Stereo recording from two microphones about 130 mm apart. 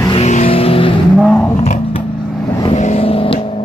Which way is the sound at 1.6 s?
55° left (ahead or behind).